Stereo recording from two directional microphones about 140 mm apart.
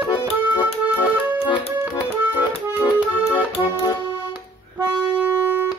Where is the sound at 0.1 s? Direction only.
35° left (ahead or behind).